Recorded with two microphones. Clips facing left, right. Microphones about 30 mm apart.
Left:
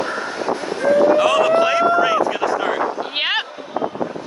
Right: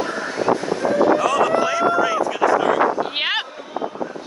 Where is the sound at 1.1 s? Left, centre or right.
Left.